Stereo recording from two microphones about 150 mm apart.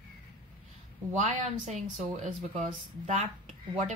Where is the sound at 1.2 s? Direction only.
50° right (ahead or behind).